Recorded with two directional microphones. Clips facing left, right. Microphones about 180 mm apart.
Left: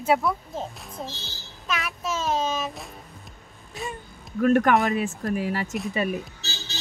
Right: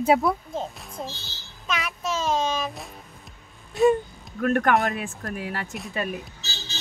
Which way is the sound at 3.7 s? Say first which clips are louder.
Right 16 dB; centre (ahead or behind).